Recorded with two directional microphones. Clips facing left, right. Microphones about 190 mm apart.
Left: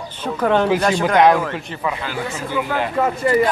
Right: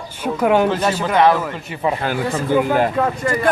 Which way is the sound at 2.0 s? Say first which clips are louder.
Right 5 dB; 50° right (ahead or behind).